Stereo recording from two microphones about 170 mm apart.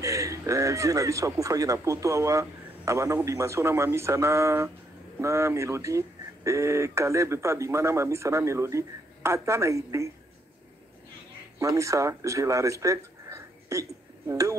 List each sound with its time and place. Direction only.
0.0 s speech: 20° right (ahead or behind)
11.6 s speech: 20° right (ahead or behind)